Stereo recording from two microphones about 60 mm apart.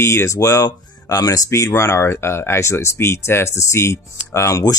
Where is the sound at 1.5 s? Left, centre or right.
Left.